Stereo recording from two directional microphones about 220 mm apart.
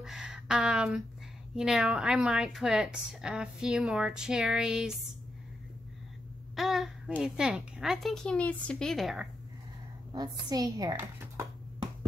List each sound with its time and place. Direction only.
0.0 s a woman's voice: centre (ahead or behind)
6.5 s a woman's voice: centre (ahead or behind)
10.1 s speech: 15° right (ahead or behind)